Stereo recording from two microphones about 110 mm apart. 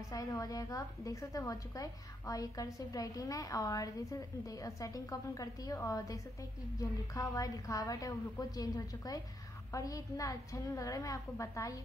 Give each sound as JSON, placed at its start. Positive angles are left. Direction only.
{"t": 0.1, "sound": "a woman's voice", "side_deg": 30}